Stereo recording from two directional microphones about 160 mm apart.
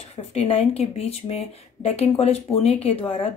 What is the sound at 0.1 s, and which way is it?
Speech, 40° left (ahead or behind).